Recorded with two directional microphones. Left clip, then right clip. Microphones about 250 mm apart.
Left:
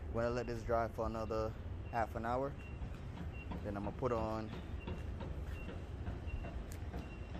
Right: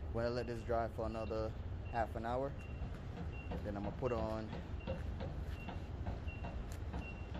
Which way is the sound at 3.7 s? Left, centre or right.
Centre.